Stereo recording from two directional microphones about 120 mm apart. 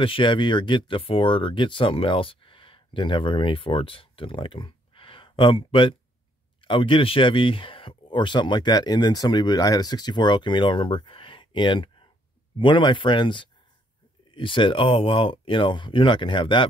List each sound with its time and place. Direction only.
0.0 s speech: 45° left (ahead or behind)